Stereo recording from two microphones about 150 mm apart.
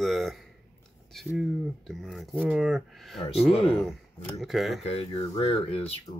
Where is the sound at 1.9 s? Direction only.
5° left (ahead or behind).